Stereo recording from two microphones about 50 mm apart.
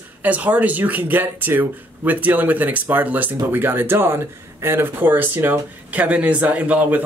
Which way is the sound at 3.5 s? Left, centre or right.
Right.